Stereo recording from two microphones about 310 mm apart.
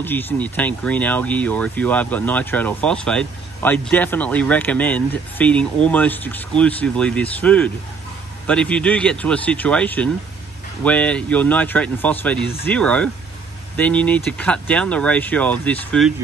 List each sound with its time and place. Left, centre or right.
0.0 s speech: centre